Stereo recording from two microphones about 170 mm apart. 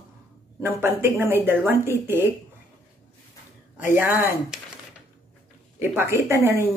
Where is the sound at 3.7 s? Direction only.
10° right (ahead or behind).